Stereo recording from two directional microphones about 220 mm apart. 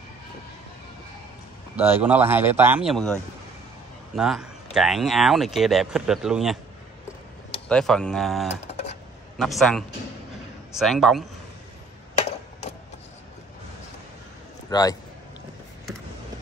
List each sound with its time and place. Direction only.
1.8 s speech: 10° right (ahead or behind)
7.6 s speech: 5° left (ahead or behind)
12.2 s a sound: 30° left (ahead or behind)
14.7 s a man's voice: 15° left (ahead or behind)